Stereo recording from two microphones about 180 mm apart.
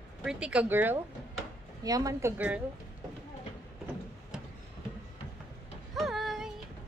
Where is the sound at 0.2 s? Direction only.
5° right (ahead or behind).